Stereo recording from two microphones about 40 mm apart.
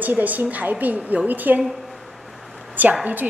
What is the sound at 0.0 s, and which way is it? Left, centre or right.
A woman's voice, right.